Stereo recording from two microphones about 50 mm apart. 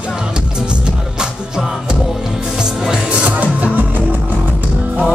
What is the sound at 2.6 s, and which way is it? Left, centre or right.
Music, centre.